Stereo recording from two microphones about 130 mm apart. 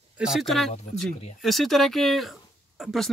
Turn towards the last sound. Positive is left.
turn(degrees=0)  # may be behind; listen again after turning